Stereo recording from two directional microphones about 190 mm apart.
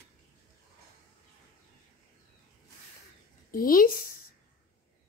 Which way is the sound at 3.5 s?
50° left (ahead or behind).